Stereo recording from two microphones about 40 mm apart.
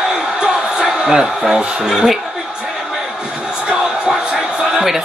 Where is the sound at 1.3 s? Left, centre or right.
Centre.